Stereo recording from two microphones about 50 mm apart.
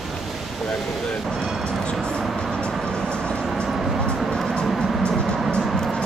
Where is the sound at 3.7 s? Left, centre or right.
Centre.